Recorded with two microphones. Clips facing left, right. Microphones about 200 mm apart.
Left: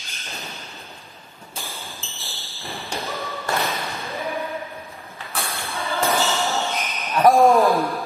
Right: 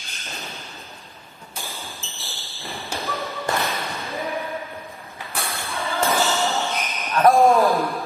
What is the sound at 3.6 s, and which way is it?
Ping, centre (ahead or behind).